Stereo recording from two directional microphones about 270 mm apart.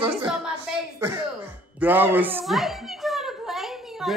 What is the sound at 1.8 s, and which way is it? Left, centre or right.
A child's voice, centre.